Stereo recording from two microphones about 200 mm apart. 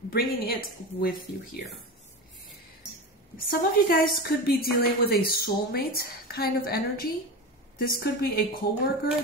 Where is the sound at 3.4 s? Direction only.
50° left (ahead or behind).